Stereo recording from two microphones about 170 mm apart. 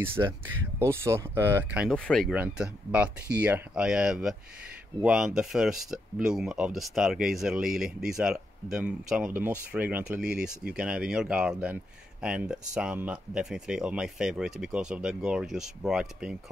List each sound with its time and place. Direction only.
0.2 s speech: 20° right (ahead or behind)
1.9 s speech: centre (ahead or behind)